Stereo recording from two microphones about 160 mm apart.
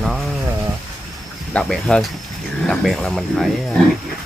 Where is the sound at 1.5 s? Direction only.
5° left (ahead or behind).